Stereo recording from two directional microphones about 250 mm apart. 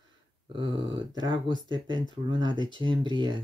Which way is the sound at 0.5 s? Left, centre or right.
Centre.